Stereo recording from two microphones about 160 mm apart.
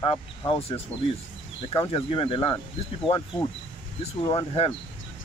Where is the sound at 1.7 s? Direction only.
30° left (ahead or behind).